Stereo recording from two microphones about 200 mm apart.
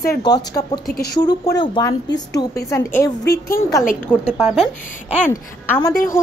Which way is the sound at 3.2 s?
50° left (ahead or behind).